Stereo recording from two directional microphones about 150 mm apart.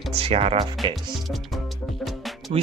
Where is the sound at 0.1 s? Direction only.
40° right (ahead or behind).